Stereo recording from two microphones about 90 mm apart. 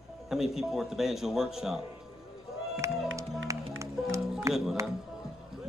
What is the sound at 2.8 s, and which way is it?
Music, 35° right (ahead or behind).